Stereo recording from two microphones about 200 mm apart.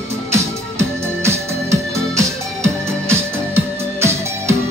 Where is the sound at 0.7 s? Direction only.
15° right (ahead or behind).